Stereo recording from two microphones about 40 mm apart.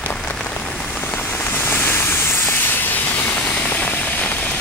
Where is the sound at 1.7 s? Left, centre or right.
Left.